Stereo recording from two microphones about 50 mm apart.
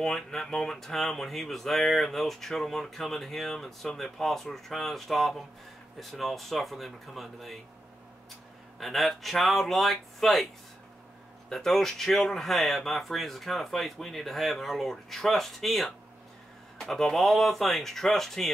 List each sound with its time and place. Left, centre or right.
0.0 s speech: centre
8.7 s speech: centre